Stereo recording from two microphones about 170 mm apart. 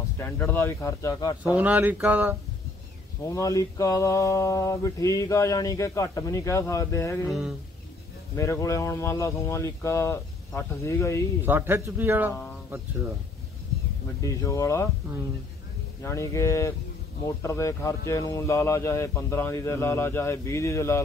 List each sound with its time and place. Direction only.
0.2 s speech: 10° left (ahead or behind)
1.4 s a man's voice: 10° right (ahead or behind)
3.3 s mantra: 20° left (ahead or behind)
7.2 s a sound: centre (ahead or behind)
8.4 s speech: 15° left (ahead or behind)
11.4 s a man's voice: 10° right (ahead or behind)
14.2 s speech: 20° left (ahead or behind)
16.0 s speech: 15° left (ahead or behind)